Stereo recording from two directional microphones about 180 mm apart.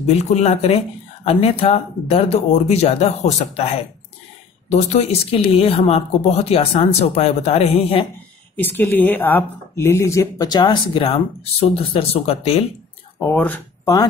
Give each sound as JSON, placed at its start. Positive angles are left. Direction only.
{"t": 0.0, "sound": "speech", "side_deg": 40}
{"t": 8.5, "sound": "speech", "side_deg": 10}
{"t": 13.2, "sound": "speech", "side_deg": 10}